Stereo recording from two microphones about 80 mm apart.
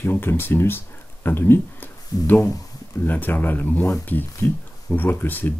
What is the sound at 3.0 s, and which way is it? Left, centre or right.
Speech, left.